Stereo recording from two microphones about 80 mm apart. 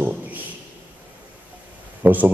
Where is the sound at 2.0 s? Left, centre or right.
Right.